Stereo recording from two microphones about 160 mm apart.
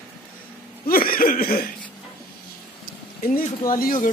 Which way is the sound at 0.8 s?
65° left (ahead or behind).